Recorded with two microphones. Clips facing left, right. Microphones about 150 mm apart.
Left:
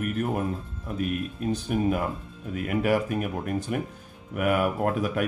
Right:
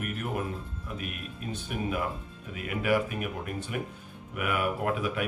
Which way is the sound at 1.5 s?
40° left (ahead or behind).